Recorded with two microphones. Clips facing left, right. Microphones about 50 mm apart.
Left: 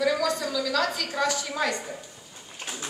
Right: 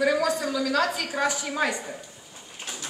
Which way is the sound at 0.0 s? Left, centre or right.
Right.